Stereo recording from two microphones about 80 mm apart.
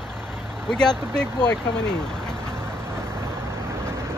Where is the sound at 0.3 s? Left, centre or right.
Centre.